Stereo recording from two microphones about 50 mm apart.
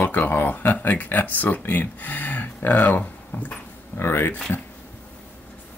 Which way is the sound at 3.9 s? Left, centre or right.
Left.